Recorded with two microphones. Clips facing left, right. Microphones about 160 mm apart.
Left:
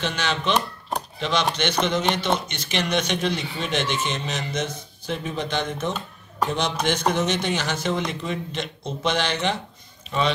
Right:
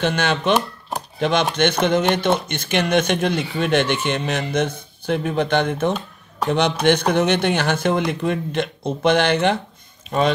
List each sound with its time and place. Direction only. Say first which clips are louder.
0.0 s speech: right 6 dB; 55° right (ahead or behind)
0.6 s chopping: right 2 dB; 5° right (ahead or behind)
1.2 s speech: right 6 dB; 50° right (ahead or behind)